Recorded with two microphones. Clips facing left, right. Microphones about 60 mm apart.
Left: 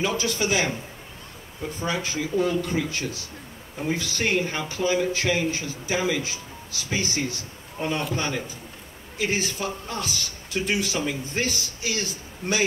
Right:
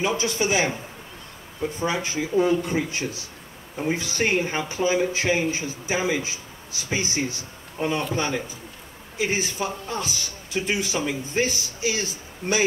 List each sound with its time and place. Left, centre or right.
0.0 s a man's voice: right